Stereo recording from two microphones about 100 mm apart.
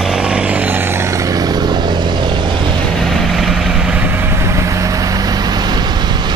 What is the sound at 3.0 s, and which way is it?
Vehicle, centre (ahead or behind).